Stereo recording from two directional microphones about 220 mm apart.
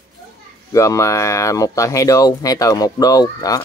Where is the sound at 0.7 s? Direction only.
15° left (ahead or behind).